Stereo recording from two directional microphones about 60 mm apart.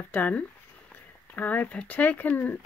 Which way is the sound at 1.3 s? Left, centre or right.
Left.